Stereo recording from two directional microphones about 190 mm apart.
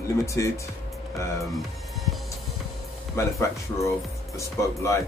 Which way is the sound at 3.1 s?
15° left (ahead or behind).